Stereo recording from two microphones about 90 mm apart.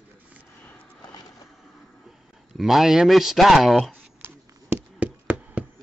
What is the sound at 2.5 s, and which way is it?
Speech, 5° right (ahead or behind).